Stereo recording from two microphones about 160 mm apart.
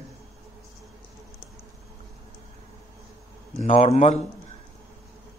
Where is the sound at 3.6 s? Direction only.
45° left (ahead or behind).